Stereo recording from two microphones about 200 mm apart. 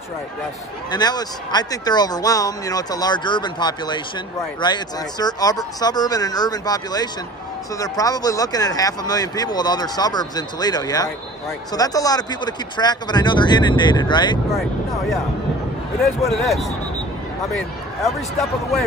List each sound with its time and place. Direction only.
0.9 s speech: 20° left (ahead or behind)
16.3 s speech: centre (ahead or behind)